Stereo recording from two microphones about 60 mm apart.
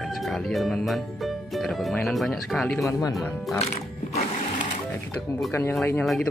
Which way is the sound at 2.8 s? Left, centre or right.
Left.